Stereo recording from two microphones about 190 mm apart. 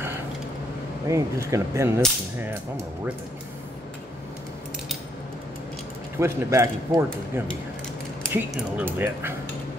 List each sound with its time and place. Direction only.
1.0 s speech: 15° right (ahead or behind)
6.1 s speech: 15° right (ahead or behind)